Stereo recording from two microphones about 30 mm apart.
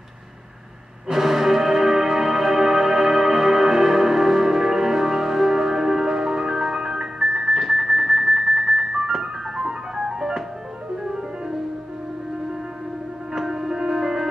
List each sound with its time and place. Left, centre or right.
1.1 s music: centre
13.5 s music: centre